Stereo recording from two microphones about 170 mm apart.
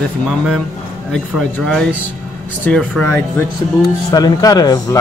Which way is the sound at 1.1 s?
5° left (ahead or behind).